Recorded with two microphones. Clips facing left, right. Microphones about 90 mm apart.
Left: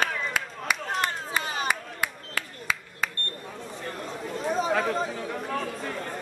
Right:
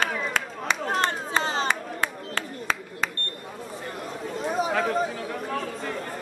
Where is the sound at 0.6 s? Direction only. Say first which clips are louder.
Right 4 dB; 30° right (ahead or behind).